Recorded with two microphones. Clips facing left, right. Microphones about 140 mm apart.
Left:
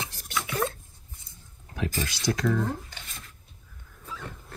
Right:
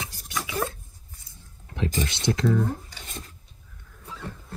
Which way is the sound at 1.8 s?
20° right (ahead or behind).